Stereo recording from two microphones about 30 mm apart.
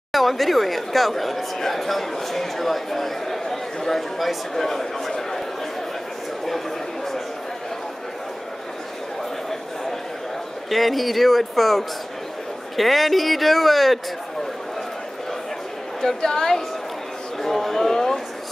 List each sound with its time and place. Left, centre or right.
0.1 s speech: centre
10.7 s speech: centre
16.0 s a woman's voice: centre